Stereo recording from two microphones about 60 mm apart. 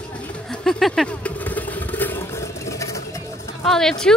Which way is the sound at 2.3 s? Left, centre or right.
Left.